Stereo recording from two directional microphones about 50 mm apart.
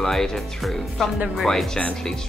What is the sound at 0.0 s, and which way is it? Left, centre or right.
Speech, centre.